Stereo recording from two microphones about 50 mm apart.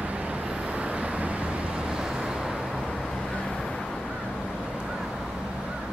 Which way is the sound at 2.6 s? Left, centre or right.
Centre.